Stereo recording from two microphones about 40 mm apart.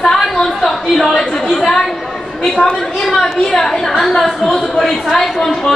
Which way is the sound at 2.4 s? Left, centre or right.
Centre.